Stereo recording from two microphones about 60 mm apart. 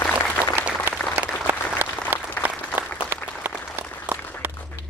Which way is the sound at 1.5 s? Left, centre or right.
Right.